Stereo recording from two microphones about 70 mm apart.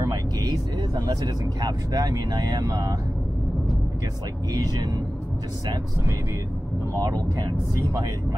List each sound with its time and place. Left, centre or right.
0.9 s speech: right
7.3 s speech: right